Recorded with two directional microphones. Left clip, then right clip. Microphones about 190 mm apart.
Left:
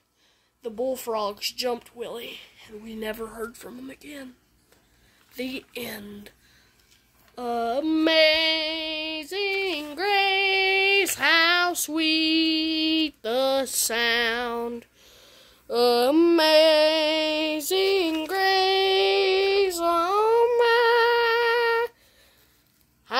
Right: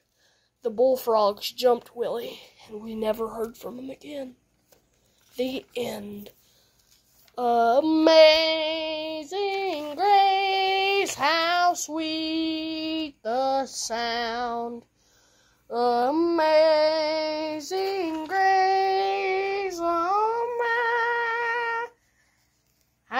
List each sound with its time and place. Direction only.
0.6 s speech: 5° right (ahead or behind)
5.3 s speech: centre (ahead or behind)
7.3 s female singing: centre (ahead or behind); by 14.4 s 45° left (ahead or behind)
14.6 s speech: 45° left (ahead or behind)
17.0 s female singing: 90° left
18.8 s music: 50° left (ahead or behind)
20.3 s humming: 55° left (ahead or behind)